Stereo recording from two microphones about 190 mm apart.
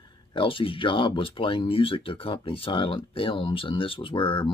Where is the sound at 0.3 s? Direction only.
25° left (ahead or behind).